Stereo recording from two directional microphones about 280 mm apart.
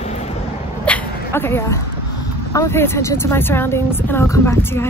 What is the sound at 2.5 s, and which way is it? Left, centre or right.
Speech, centre.